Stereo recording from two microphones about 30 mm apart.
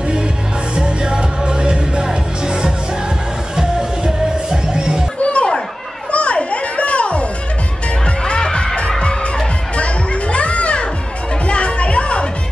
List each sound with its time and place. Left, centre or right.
0.7 s music: right
4.0 s music: right
5.2 s children playing: left
8.4 s music: left
9.8 s children playing: left
11.4 s music: left